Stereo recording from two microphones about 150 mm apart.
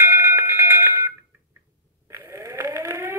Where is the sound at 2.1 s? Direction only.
20° right (ahead or behind).